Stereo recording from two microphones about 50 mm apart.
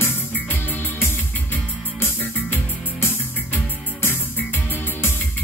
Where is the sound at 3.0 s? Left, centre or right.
Left.